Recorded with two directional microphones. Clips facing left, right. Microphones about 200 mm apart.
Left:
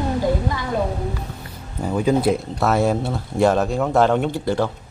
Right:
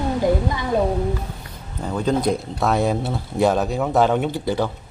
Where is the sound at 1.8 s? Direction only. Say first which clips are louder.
Left 2 dB; 10° left (ahead or behind).